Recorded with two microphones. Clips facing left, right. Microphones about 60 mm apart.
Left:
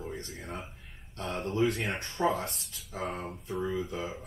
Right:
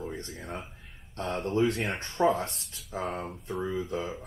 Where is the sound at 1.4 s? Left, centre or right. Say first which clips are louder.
Right 2 dB; right.